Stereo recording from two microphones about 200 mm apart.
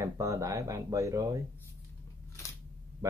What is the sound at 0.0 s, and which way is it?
Speech, 15° right (ahead or behind).